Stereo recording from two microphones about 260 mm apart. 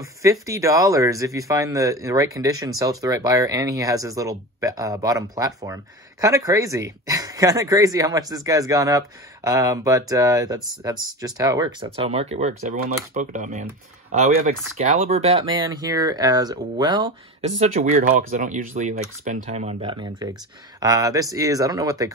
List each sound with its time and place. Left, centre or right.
0.2 s speech: centre